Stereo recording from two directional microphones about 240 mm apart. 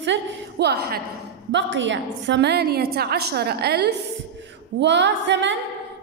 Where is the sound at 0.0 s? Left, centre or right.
Right.